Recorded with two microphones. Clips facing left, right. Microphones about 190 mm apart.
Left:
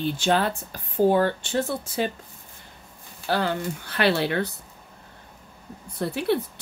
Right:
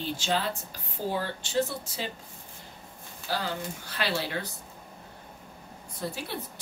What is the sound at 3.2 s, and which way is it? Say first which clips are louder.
Speech: left 7 dB; 60° left (ahead or behind).